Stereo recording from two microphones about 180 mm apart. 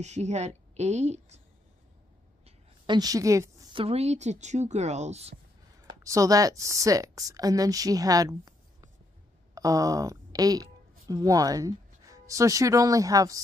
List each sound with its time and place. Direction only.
0.0 s speech: 40° right (ahead or behind)
2.4 s a woman's voice: 25° right (ahead or behind)
3.7 s speech: 35° right (ahead or behind)
6.0 s a woman's voice: 20° right (ahead or behind)